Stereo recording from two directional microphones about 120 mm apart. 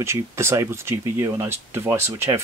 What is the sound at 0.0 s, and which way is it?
Speech, 20° right (ahead or behind).